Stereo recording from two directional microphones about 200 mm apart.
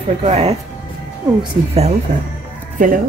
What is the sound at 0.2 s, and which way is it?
Speech, 30° right (ahead or behind).